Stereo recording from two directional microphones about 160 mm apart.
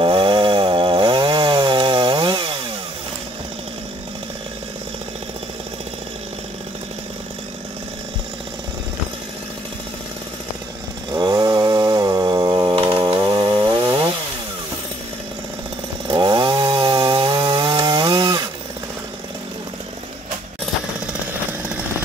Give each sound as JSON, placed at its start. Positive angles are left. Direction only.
{"t": 0.0, "sound": "chainsaw", "side_deg": -30}
{"t": 11.1, "sound": "chainsaw", "side_deg": -25}
{"t": 16.1, "sound": "chainsaw", "side_deg": -30}